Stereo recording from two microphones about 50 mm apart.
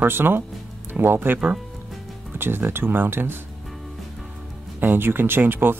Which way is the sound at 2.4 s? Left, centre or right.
Right.